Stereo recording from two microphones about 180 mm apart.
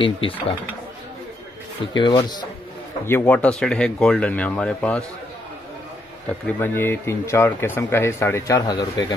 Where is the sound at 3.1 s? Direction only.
10° left (ahead or behind).